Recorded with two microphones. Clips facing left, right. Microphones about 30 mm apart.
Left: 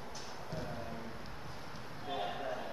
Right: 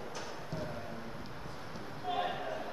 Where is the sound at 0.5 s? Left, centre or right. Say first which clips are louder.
Even; centre.